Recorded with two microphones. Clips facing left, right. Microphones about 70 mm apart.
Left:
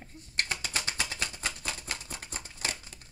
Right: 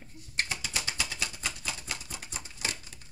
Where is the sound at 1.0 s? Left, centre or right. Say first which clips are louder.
Left 1 dB; left.